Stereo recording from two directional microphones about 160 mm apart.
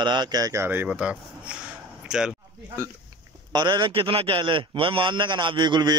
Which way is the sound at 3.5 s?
25° right (ahead or behind).